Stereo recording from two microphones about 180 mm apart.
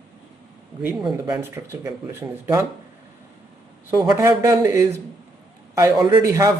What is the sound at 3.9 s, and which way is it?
A man's voice, 20° right (ahead or behind).